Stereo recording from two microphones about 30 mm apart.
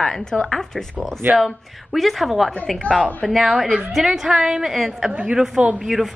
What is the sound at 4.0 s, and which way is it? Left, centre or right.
A woman's voice, centre.